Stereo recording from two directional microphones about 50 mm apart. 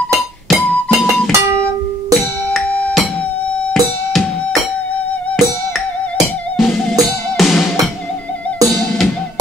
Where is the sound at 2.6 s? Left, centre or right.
Left.